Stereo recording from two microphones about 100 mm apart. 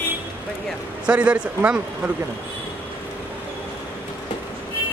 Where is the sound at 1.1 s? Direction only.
10° right (ahead or behind).